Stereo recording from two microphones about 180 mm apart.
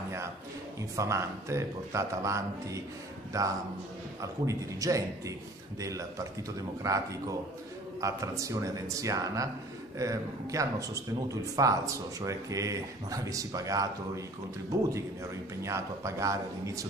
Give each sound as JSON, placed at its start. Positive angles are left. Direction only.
{"t": 0.9, "sound": "speech", "side_deg": -15}